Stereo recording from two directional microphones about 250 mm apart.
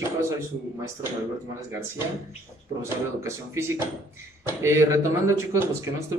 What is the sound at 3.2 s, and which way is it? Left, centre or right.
Speech, centre.